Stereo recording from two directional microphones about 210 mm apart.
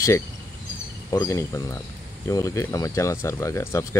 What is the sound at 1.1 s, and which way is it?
Speech, 15° left (ahead or behind).